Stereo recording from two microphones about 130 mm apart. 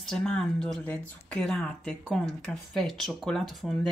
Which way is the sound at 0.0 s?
5° left (ahead or behind).